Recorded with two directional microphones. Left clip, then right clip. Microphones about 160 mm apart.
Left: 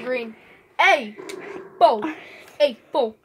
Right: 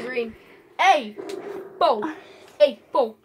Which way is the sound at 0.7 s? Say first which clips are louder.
Left 1 dB; 60° left (ahead or behind).